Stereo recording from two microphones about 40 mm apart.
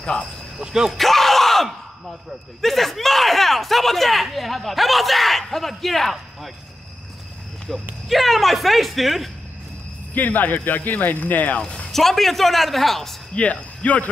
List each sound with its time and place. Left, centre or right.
0.2 s cricket: centre
0.9 s a sound: centre
2.6 s speech: centre
7.7 s speech: centre
8.1 s speech: centre
10.1 s speech: left
11.6 s a sound: left
11.9 s speech: centre
13.3 s speech: left